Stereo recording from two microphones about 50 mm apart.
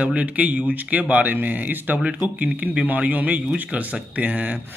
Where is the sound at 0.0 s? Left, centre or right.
Right.